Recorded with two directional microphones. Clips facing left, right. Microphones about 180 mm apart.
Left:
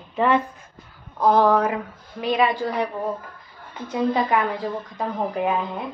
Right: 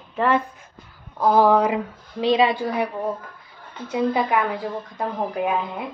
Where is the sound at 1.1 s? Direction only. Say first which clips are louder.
Right 1 dB; 5° right (ahead or behind).